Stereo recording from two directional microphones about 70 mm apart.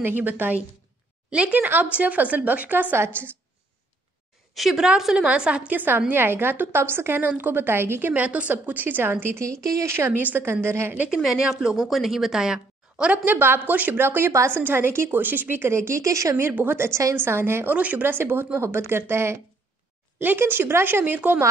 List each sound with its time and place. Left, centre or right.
0.0 s a woman's voice: right
4.6 s a woman's voice: centre; by 9.1 s right
9.1 s a woman's voice: right
9.8 s speech: right
10.1 s speech: right
11.2 s a woman's voice: centre
13.1 s a woman's voice: right
16.3 s speech: right
17.7 s a woman's voice: right